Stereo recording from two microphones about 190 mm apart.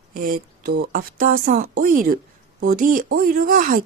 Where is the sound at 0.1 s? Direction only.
50° right (ahead or behind).